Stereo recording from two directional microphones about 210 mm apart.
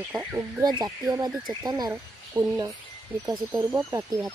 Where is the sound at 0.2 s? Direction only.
10° right (ahead or behind).